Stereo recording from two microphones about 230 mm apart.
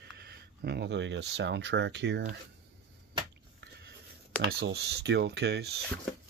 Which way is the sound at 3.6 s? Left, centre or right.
Right.